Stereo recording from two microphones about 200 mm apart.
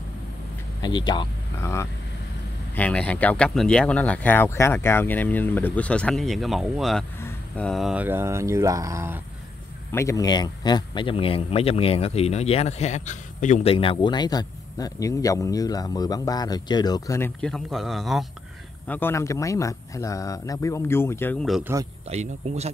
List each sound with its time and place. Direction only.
0.8 s speech: 20° left (ahead or behind); by 9.2 s 15° right (ahead or behind)
9.8 s speech: 15° left (ahead or behind)
18.9 s speech: 10° left (ahead or behind)
22.1 s speech: 35° right (ahead or behind)